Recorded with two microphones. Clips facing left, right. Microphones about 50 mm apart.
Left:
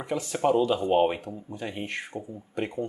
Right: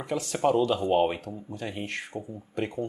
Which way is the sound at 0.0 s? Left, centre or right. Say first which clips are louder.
Even; centre.